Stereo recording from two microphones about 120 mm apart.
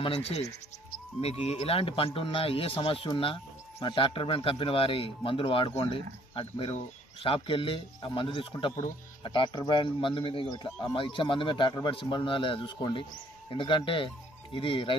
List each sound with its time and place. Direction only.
0.0 s speech: 60° left (ahead or behind)